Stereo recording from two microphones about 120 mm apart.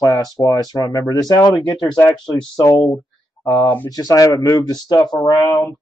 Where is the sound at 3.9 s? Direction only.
30° left (ahead or behind).